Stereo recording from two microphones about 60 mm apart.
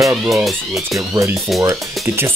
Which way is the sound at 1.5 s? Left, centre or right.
Right.